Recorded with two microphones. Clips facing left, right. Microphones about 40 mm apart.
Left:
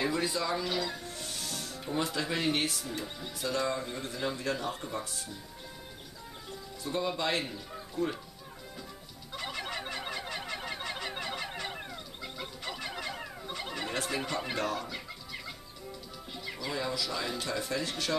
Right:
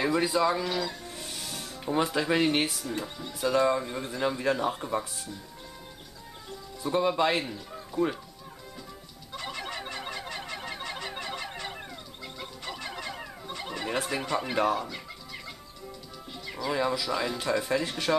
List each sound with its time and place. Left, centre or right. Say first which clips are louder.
0.0 s speech: right 6 dB; centre
0.7 s speech: right 2 dB; centre
1.0 s music: right 1 dB; centre
3.3 s speech: right 7 dB; centre
4.4 s speech: right 6 dB; right
6.8 s speech: right 7 dB; centre
7.4 s speech: right 2 dB; centre
7.9 s speech: right 5 dB; centre
9.3 s a sound: right 1 dB; centre
13.8 s speech: right 4 dB; centre
14.8 s chicken: right 3 dB; centre
16.4 s music: right 6 dB; centre
16.7 s speech: right 6 dB; centre